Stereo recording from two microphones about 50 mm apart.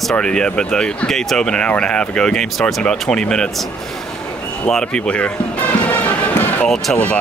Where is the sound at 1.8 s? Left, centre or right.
Centre.